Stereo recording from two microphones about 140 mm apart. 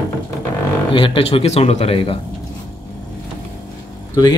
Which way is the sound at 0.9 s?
40° left (ahead or behind).